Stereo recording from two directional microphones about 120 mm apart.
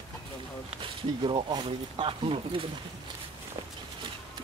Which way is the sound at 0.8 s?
45° right (ahead or behind).